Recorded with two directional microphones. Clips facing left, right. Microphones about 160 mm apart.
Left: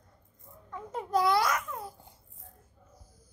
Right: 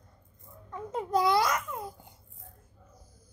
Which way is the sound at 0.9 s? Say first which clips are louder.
Right 1 dB; 20° right (ahead or behind).